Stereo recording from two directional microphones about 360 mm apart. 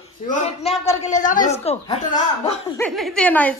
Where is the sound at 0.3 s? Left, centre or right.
Centre.